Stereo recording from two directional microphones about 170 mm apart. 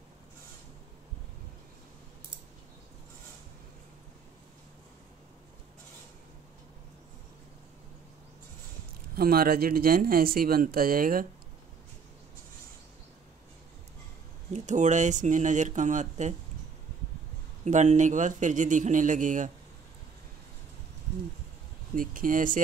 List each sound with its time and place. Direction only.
9.1 s speech: 60° right (ahead or behind)
14.5 s speech: 45° right (ahead or behind)
17.6 s speech: 45° right (ahead or behind)
21.9 s speech: 55° right (ahead or behind)